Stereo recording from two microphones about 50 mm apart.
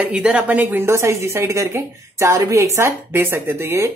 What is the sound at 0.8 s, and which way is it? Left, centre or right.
A woman's voice, right.